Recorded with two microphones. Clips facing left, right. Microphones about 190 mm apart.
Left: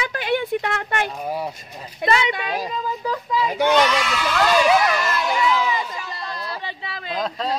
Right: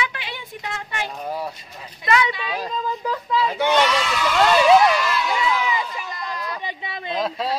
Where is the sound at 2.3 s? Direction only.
55° left (ahead or behind).